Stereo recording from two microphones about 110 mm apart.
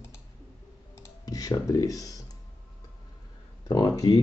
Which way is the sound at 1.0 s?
35° left (ahead or behind).